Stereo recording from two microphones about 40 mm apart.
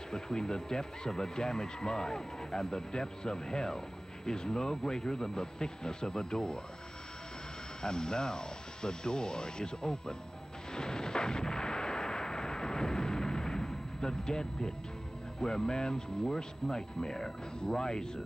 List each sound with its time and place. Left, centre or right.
0.1 s speech: centre
7.8 s speech: centre
10.7 s artillery fire: centre
15.4 s speech: centre